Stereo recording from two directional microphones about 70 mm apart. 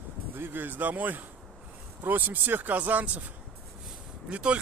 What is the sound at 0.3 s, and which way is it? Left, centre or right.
Speech, right.